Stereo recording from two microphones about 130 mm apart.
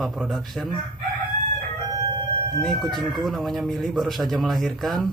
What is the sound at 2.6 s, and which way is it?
Speech, centre (ahead or behind).